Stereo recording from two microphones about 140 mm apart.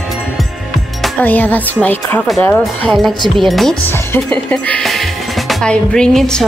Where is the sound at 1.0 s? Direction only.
10° left (ahead or behind).